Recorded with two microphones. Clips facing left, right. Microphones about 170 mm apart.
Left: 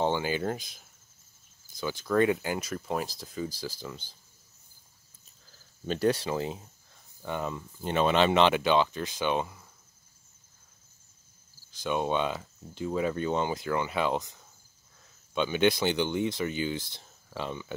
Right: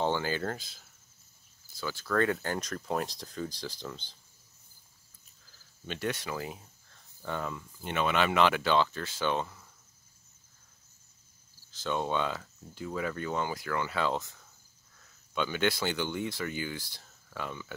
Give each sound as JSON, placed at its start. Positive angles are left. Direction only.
{"t": 0.0, "sound": "speech", "side_deg": 15}
{"t": 5.9, "sound": "speech", "side_deg": 35}
{"t": 6.9, "sound": "cricket", "side_deg": 15}
{"t": 7.8, "sound": "speech", "side_deg": 30}
{"t": 11.7, "sound": "speech", "side_deg": 15}